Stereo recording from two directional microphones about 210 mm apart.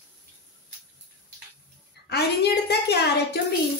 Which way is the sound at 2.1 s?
50° left (ahead or behind).